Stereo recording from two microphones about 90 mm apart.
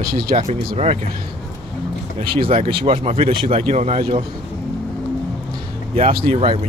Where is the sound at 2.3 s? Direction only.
90° right.